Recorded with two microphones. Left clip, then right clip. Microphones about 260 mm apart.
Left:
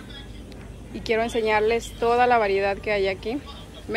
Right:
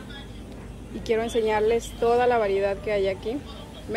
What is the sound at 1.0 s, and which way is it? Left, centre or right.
Speech, centre.